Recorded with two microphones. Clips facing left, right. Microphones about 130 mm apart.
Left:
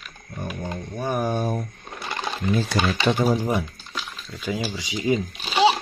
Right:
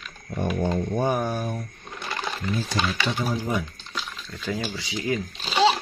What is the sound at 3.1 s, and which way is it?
Speech, 50° left (ahead or behind).